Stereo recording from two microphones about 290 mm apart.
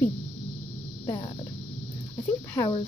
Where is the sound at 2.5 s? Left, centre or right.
Centre.